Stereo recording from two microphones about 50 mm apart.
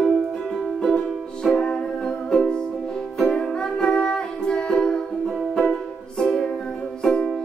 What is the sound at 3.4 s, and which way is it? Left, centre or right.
Music, centre.